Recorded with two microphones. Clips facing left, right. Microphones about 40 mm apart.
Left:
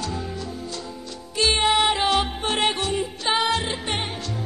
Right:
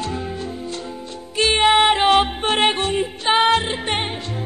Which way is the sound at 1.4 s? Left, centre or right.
Right.